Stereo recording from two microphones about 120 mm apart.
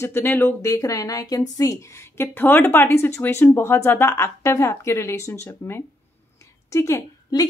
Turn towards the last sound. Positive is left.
turn(degrees=25)  # may be behind; listen again after turning